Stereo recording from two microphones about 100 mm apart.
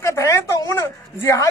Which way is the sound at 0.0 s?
30° left (ahead or behind).